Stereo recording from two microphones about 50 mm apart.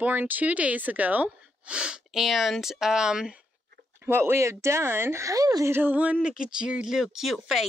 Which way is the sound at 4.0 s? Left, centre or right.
Right.